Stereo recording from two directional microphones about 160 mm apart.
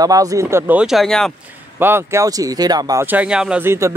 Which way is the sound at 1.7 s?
15° right (ahead or behind).